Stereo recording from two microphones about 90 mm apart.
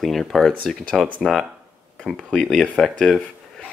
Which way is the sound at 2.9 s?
5° left (ahead or behind).